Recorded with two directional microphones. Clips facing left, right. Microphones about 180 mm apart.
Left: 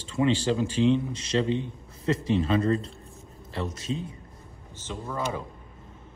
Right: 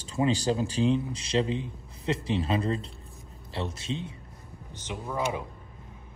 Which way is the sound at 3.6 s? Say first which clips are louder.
Left 2 dB; 30° right (ahead or behind).